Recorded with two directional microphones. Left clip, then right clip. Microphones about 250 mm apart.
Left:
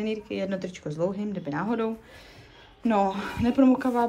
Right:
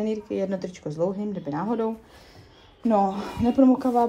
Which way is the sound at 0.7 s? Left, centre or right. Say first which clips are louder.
Right 2 dB; centre.